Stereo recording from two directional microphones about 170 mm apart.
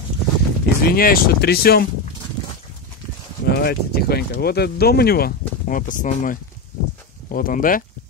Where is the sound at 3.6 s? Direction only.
65° left (ahead or behind).